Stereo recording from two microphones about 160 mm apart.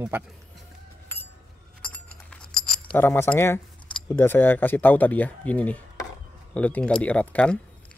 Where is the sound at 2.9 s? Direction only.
15° left (ahead or behind).